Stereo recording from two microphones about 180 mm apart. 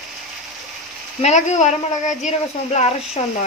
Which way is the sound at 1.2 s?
40° left (ahead or behind).